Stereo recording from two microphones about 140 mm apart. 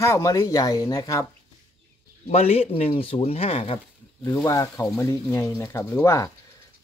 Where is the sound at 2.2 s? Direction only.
50° left (ahead or behind).